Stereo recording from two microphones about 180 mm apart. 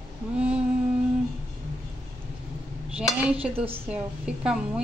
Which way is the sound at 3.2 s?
5° right (ahead or behind).